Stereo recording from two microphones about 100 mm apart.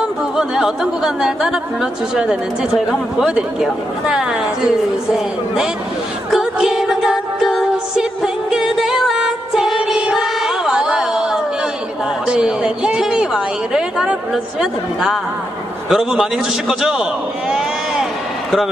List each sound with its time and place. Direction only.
0.0 s speech: 5° right (ahead or behind)
6.3 s music: 5° right (ahead or behind)
12.3 s a sound: 5° right (ahead or behind)
15.9 s a man's voice: 5° right (ahead or behind)